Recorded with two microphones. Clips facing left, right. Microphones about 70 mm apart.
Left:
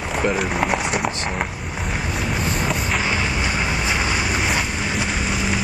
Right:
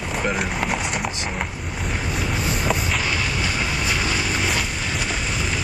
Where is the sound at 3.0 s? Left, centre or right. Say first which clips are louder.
Left 2 dB; left.